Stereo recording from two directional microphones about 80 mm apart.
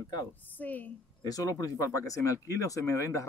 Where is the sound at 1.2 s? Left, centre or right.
Left.